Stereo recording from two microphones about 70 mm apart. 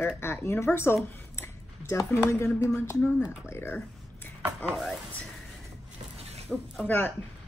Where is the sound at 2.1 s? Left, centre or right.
Left.